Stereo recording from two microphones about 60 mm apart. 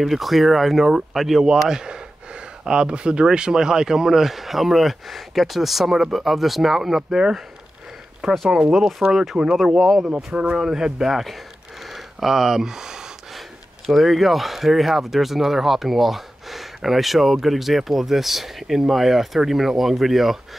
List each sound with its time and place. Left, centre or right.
0.0 s speech: centre
8.5 s speech: centre
10.0 s speech: centre
11.8 s a sound: centre
13.9 s speech: centre